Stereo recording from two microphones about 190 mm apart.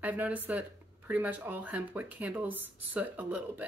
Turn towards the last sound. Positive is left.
turn(degrees=-10)  # may be behind; listen again after turning